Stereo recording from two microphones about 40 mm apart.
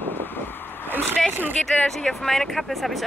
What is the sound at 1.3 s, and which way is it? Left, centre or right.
Speech, right.